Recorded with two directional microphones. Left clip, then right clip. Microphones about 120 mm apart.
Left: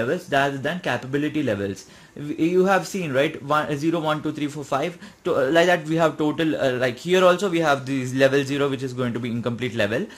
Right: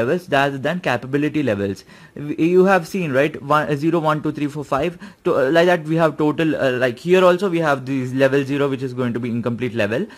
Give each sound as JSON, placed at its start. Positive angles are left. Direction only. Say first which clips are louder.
{"t": 0.0, "sound": "speech", "louder": "right 4 dB", "side_deg": -45}